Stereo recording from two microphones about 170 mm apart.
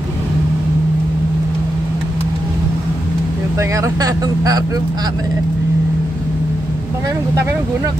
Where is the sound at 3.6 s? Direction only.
20° right (ahead or behind).